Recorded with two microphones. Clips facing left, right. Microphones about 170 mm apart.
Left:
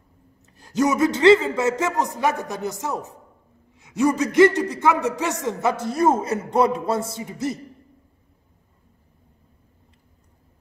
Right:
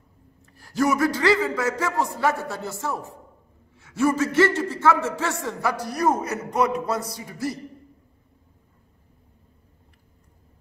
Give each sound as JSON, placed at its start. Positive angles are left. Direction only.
{"t": 0.4, "sound": "a man's voice", "side_deg": 20}